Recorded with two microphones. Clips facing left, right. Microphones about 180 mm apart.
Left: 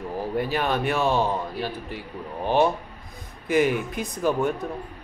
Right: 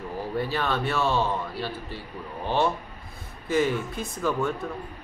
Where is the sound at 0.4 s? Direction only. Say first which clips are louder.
Left 2 dB; 15° left (ahead or behind).